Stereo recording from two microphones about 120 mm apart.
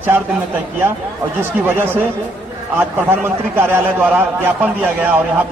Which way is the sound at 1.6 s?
15° right (ahead or behind).